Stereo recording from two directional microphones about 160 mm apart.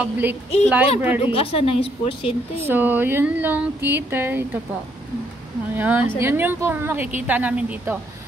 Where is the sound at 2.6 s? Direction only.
10° right (ahead or behind).